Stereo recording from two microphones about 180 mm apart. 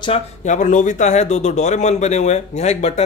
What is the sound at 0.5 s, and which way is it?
Speech, 45° left (ahead or behind).